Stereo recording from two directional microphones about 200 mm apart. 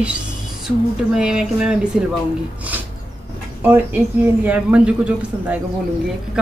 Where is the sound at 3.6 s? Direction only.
10° right (ahead or behind).